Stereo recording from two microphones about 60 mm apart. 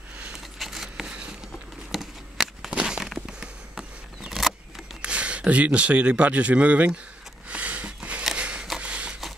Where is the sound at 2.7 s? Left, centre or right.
Centre.